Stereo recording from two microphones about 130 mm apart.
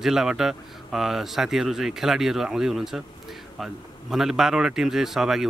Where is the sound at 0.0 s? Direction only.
5° right (ahead or behind).